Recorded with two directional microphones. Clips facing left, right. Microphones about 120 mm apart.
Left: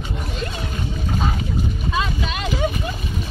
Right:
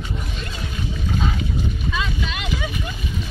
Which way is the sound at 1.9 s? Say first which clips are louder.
Left 3 dB; 40° left (ahead or behind).